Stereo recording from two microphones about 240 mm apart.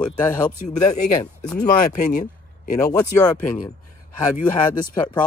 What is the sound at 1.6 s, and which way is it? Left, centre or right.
Speech, centre.